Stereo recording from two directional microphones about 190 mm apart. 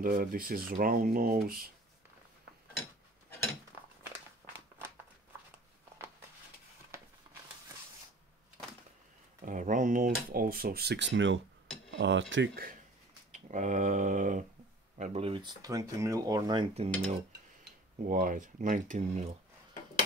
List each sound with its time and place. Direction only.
0.0 s speech: 50° right (ahead or behind)
9.4 s speech: 45° right (ahead or behind); by 11.4 s 75° right (ahead or behind)
11.9 s cutlery: 70° right (ahead or behind)
13.3 s speech: 40° right (ahead or behind)
15.0 s speech: 30° right (ahead or behind)
16.7 s cutlery: 35° right (ahead or behind)
18.0 s speech: 45° right (ahead or behind)